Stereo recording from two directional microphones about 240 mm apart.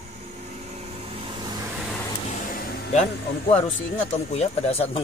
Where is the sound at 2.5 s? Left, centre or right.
Left.